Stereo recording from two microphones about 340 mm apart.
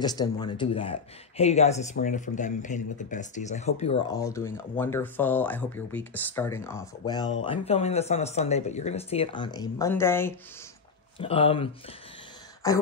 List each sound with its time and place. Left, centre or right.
0.0 s speech: centre